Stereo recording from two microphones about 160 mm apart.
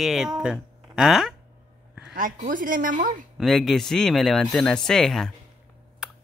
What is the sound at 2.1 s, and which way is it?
Speech, 55° right (ahead or behind).